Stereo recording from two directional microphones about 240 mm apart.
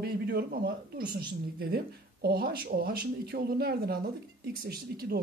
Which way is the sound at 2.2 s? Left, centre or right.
Right.